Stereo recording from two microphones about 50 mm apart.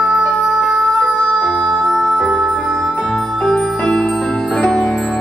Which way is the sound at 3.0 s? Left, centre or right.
Centre.